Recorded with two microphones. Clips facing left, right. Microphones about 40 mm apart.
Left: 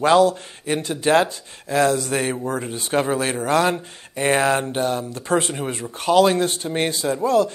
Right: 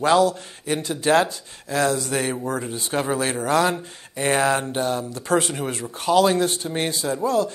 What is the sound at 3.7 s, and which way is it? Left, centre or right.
Speech, left.